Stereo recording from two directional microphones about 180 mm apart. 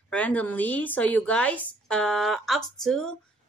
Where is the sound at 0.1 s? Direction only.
10° left (ahead or behind).